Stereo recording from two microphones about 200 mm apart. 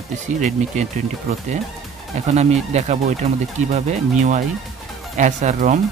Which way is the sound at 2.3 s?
35° right (ahead or behind).